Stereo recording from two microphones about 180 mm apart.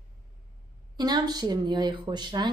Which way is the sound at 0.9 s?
20° right (ahead or behind).